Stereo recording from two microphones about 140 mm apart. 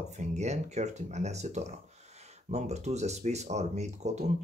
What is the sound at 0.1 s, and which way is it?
Speech, 55° right (ahead or behind).